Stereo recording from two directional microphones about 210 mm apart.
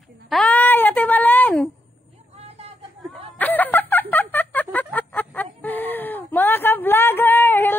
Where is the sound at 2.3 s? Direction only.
30° right (ahead or behind).